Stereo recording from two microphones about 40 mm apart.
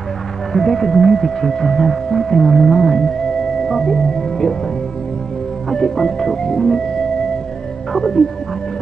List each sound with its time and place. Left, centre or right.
0.5 s speech: centre
5.7 s speech: centre
7.9 s speech: centre